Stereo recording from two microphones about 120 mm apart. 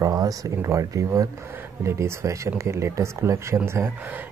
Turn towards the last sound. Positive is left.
turn(degrees=-20)  # may be behind; listen again after turning